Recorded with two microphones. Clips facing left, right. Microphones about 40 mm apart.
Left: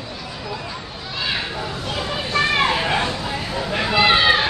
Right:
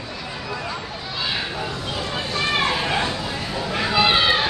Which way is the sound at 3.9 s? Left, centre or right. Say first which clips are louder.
Left 3 dB; left.